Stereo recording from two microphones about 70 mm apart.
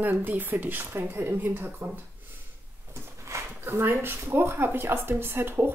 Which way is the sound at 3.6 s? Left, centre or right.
Right.